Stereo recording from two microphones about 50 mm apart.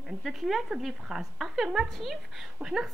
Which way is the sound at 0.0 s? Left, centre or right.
Centre.